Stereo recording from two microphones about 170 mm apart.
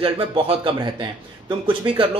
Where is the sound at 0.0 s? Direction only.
35° right (ahead or behind).